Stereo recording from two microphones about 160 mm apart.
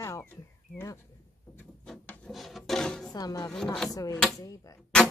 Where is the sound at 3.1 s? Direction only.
25° left (ahead or behind).